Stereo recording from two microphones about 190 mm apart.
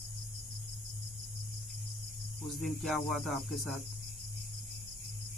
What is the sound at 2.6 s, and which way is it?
Speech, centre (ahead or behind).